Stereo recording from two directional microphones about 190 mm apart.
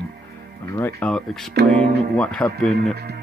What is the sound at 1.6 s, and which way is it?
Speech, 60° right (ahead or behind).